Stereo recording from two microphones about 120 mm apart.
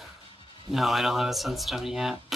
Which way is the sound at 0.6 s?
Centre (ahead or behind).